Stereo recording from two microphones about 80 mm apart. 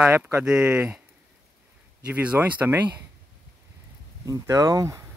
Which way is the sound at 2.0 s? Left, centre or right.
Centre.